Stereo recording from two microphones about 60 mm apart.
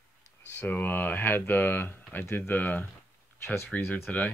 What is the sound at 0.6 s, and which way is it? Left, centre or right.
Speech, left.